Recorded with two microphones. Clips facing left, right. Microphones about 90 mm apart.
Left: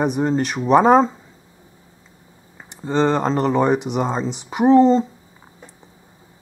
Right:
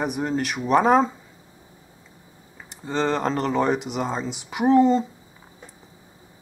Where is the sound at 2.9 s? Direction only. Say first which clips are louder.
Left 5 dB; centre (ahead or behind).